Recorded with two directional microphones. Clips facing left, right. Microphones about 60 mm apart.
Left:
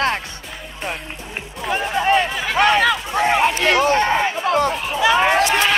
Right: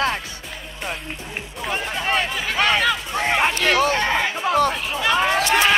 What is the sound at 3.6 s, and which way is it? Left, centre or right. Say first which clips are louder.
Speech: left 2 dB; left.